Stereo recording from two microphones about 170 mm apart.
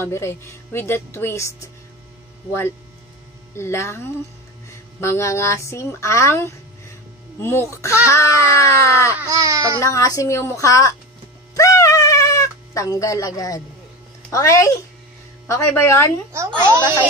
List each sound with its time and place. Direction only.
0.0 s speech: 15° left (ahead or behind)
3.5 s speech: 15° left (ahead or behind)
9.2 s speech: 20° right (ahead or behind)
9.8 s speech: 20° left (ahead or behind)
11.5 s cat: 20° left (ahead or behind)
14.3 s speech: 20° left (ahead or behind)
16.3 s a child's voice: 15° right (ahead or behind)